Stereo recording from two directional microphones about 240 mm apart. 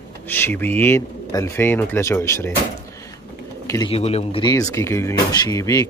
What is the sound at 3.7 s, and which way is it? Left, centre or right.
Speech, centre.